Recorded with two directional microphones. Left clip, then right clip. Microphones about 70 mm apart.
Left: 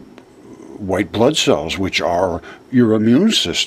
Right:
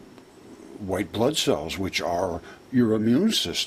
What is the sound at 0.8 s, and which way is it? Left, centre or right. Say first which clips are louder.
Speech: left 9 dB; centre.